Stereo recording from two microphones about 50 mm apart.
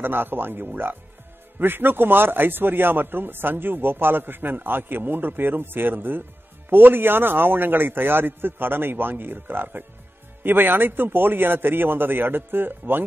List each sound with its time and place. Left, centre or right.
0.0 s speech: right